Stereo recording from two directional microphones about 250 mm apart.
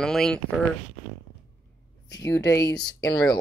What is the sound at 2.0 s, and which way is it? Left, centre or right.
Speech, centre.